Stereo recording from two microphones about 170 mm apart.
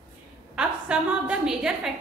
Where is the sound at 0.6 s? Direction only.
5° right (ahead or behind).